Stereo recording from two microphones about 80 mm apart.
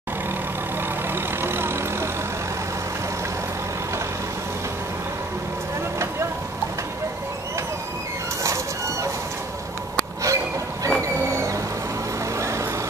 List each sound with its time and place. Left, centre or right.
1.1 s vehicle: right
10.2 s a sound: right
12.4 s vehicle: right